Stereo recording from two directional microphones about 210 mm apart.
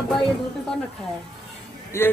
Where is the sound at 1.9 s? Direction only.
10° left (ahead or behind).